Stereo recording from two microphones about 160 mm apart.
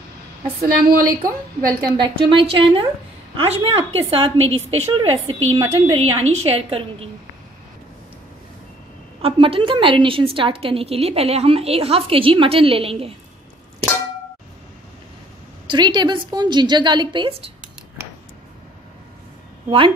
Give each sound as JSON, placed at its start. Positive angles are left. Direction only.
{"t": 0.6, "sound": "a woman's voice", "side_deg": -65}
{"t": 2.0, "sound": "a woman's voice", "side_deg": -30}
{"t": 9.2, "sound": "a woman's voice", "side_deg": -35}
{"t": 15.6, "sound": "a woman's voice", "side_deg": -30}